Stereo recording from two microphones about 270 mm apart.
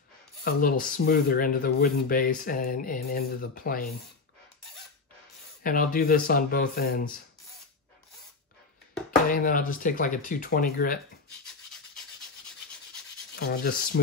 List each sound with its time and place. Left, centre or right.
0.4 s speech: left
5.6 s speech: left
9.3 s speech: left
11.4 s rub: centre
13.4 s speech: left